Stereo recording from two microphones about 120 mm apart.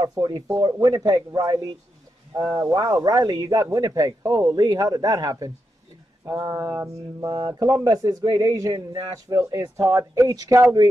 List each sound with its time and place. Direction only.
0.0 s a man's voice: 35° right (ahead or behind)
7.2 s a man's voice: 35° right (ahead or behind)